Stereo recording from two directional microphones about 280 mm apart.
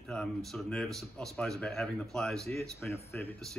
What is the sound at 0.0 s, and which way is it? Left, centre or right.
Speech, centre.